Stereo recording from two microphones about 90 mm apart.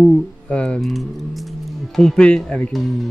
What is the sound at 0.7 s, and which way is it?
Speech, centre (ahead or behind).